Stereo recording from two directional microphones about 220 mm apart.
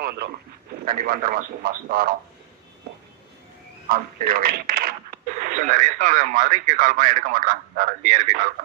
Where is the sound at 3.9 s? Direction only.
40° right (ahead or behind).